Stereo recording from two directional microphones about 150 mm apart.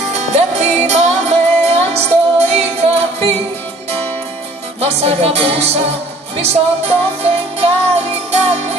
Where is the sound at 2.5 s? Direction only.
45° right (ahead or behind).